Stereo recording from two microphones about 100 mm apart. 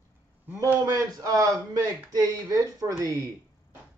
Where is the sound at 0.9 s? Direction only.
35° right (ahead or behind).